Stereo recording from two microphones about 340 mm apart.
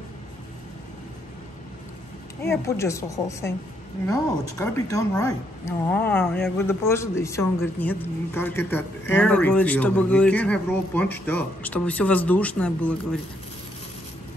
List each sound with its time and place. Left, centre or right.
2.4 s a woman's voice: centre